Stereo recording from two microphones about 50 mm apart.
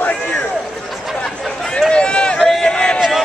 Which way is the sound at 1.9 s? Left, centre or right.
Centre.